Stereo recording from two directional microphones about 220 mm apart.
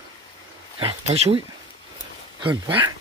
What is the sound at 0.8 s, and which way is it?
Speech, 25° right (ahead or behind).